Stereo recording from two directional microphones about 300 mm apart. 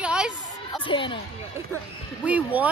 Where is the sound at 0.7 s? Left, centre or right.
Centre.